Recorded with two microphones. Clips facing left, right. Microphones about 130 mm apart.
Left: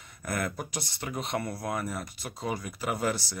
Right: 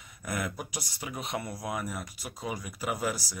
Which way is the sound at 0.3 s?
10° right (ahead or behind).